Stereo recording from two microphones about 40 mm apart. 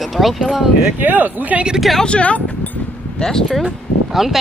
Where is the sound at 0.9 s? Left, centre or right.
Right.